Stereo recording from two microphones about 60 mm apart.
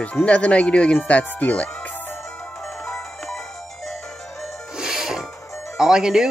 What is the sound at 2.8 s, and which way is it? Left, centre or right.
Music, centre.